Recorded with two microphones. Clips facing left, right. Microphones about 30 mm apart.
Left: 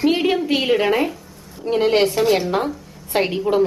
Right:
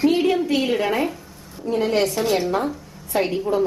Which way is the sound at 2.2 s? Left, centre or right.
Centre.